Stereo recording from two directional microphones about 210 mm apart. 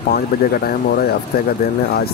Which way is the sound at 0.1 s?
45° left (ahead or behind).